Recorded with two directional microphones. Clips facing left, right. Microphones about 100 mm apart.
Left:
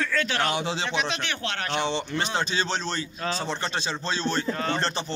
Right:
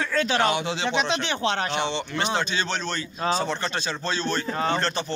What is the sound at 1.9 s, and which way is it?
A man's voice, 35° left (ahead or behind).